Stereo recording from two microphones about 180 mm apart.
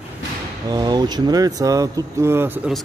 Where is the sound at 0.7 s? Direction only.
20° right (ahead or behind).